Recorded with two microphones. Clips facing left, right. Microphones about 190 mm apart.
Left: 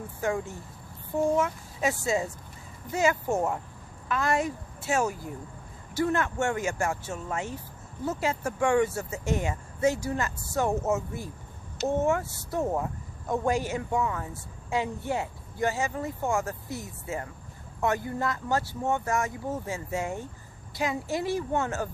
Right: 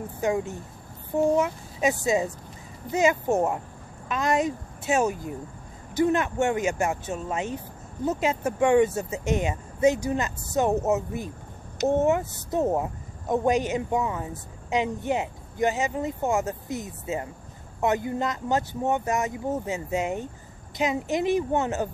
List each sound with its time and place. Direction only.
0.2 s a woman's voice: 20° right (ahead or behind)